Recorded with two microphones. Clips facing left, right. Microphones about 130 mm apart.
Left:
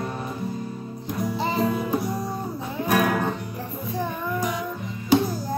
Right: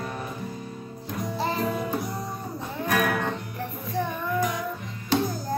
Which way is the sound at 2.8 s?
15° left (ahead or behind).